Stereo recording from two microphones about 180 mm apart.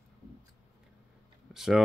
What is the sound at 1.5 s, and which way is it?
Speech, centre (ahead or behind).